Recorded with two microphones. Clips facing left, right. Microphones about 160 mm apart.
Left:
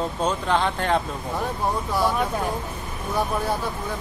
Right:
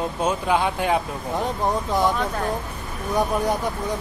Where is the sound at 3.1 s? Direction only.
15° right (ahead or behind).